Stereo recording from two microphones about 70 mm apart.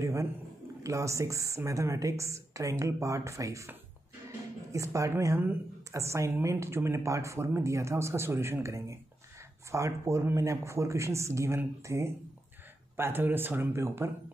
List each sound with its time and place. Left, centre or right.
0.0 s a sound: right
0.8 s a woman's voice: right
4.7 s a woman's voice: right